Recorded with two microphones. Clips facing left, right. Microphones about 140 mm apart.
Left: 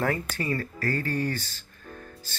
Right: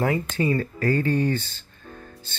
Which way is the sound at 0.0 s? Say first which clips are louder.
Right 5 dB; 20° right (ahead or behind).